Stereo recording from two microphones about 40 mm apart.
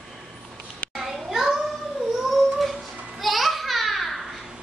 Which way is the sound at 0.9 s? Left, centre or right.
Centre.